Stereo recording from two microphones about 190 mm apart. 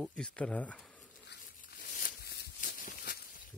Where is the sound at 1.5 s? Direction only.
45° left (ahead or behind).